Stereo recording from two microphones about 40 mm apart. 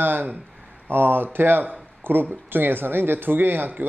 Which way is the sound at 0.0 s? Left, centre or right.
Right.